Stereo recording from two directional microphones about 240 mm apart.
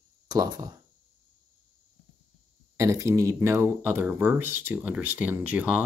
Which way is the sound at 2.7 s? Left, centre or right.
Centre.